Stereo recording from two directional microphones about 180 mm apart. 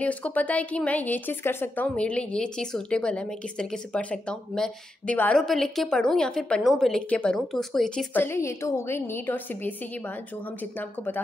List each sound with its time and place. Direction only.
0.0 s speech: 10° left (ahead or behind)